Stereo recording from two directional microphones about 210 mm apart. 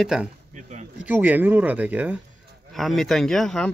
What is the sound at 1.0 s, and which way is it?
Speech, 10° right (ahead or behind).